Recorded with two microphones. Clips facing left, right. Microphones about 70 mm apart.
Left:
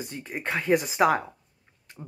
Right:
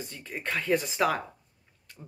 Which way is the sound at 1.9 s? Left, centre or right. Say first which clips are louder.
Left 5 dB; left.